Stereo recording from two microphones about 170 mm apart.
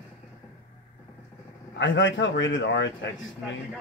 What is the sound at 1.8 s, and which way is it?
Speech, 90° left.